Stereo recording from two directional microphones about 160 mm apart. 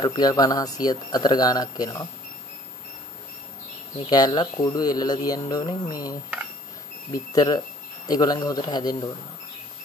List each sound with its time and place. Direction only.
0.0 s speech: 25° left (ahead or behind)
4.1 s speech: 25° left (ahead or behind)
7.3 s speech: 25° left (ahead or behind)